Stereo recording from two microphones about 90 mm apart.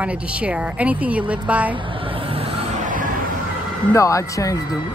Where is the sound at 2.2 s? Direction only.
90° right.